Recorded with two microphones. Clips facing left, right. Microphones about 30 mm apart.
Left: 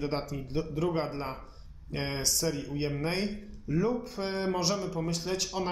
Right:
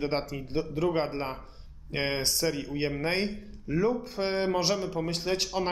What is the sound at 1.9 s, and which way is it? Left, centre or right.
A woman's voice, right.